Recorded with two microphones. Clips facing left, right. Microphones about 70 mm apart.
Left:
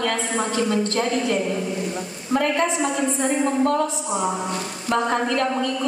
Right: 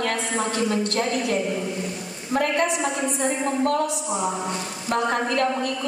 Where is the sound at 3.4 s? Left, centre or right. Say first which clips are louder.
Left 2 dB; left.